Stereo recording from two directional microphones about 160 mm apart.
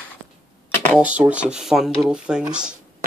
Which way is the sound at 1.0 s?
10° right (ahead or behind).